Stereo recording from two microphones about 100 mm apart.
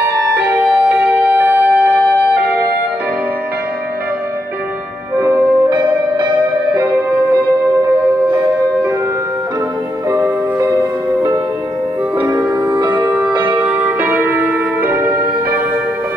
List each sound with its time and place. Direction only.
0.4 s music: 15° right (ahead or behind)
5.1 s music: 30° right (ahead or behind)
5.7 s music: 45° right (ahead or behind)
10.1 s music: 20° right (ahead or behind)
12.7 s music: 50° right (ahead or behind)
13.0 s music: 15° right (ahead or behind)